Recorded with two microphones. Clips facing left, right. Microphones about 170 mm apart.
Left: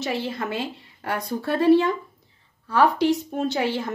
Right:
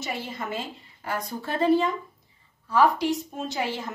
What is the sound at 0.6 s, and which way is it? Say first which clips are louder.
A woman's voice: left 5 dB; 65° left (ahead or behind).